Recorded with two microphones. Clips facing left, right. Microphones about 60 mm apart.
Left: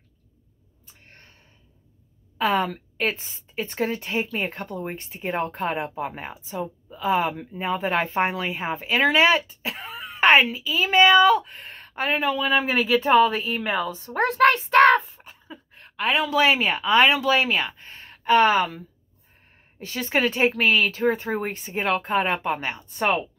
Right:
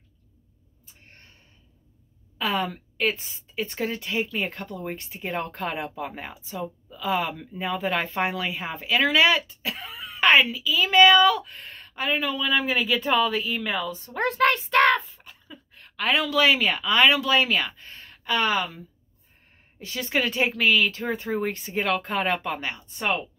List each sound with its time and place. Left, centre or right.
2.3 s a woman's voice: left
14.0 s a sound: left
16.3 s speech: left
17.3 s speech: centre; by 18.8 s left
19.8 s speech: left
21.5 s speech: left